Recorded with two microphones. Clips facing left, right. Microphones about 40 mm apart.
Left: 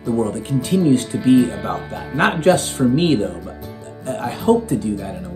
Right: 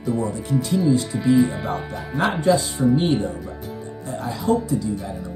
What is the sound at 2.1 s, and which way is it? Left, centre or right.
Speech, left.